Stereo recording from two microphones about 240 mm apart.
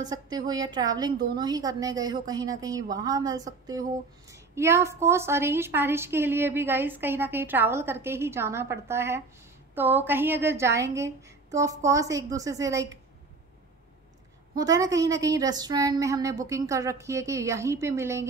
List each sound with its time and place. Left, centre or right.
0.0 s a woman's voice: centre
14.5 s a woman's voice: centre